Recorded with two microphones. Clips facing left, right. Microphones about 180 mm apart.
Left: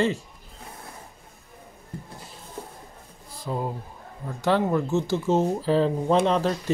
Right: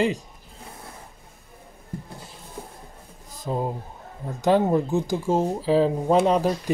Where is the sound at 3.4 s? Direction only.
25° right (ahead or behind).